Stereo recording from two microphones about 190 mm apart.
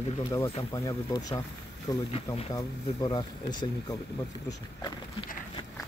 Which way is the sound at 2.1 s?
30° left (ahead or behind).